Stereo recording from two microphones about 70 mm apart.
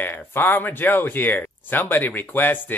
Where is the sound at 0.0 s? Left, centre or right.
Left.